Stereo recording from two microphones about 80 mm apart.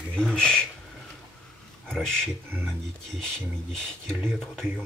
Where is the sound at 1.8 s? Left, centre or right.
Centre.